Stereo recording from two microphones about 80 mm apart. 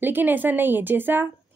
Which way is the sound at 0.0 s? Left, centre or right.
Right.